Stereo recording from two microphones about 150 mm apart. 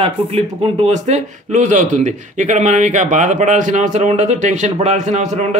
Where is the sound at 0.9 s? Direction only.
55° right (ahead or behind).